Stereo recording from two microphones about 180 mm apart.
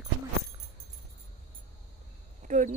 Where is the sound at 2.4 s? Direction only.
45° right (ahead or behind).